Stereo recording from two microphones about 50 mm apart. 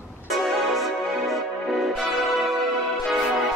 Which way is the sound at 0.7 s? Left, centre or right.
Centre.